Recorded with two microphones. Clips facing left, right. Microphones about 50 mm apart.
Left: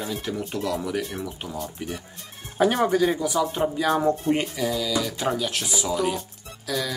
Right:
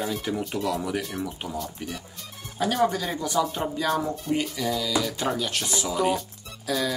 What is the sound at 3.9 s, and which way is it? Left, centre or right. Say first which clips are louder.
Speech: left 5 dB; left.